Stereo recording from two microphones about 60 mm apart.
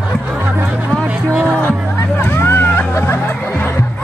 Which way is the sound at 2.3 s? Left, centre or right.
Left.